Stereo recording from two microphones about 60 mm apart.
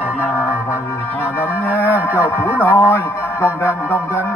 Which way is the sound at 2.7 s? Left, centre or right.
Left.